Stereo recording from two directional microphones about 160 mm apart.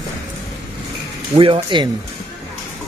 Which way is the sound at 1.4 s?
35° right (ahead or behind).